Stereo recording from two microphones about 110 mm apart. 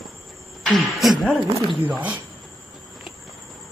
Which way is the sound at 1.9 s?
10° right (ahead or behind).